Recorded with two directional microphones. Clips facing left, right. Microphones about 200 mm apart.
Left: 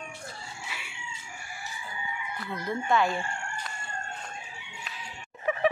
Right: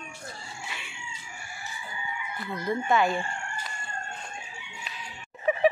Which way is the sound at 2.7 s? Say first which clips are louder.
Right 2 dB; centre (ahead or behind).